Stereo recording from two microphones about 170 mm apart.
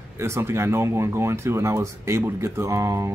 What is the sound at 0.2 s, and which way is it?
Speech, 15° right (ahead or behind).